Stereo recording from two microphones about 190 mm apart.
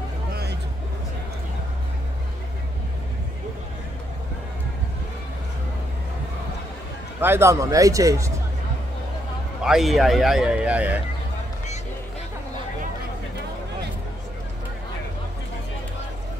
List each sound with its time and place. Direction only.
0.3 s a sound: 55° right (ahead or behind)
7.2 s speech: 10° right (ahead or behind)
9.6 s speech: centre (ahead or behind)